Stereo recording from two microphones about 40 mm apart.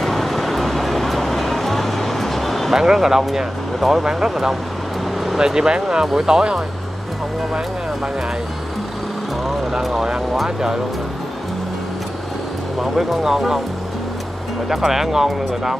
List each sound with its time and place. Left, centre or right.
0.0 s music: centre
2.7 s speech: centre
4.0 s speech: centre
12.8 s speech: centre
14.7 s speech: centre